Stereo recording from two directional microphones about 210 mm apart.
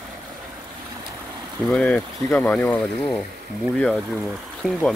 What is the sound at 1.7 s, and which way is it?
Speech, 5° left (ahead or behind).